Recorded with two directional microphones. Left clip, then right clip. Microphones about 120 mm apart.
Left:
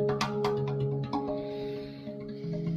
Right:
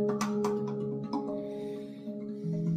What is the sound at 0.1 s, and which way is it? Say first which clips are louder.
Music: left 2 dB; 5° right (ahead or behind).